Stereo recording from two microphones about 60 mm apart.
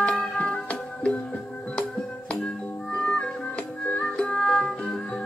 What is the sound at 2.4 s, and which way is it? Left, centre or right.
Music, centre.